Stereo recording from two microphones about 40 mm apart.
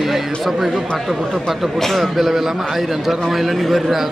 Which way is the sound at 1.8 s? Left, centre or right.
Centre.